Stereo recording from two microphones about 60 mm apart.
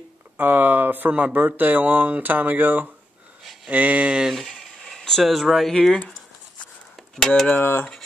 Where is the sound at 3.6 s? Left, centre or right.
Right.